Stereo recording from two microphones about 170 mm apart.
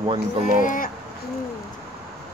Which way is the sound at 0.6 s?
55° left (ahead or behind).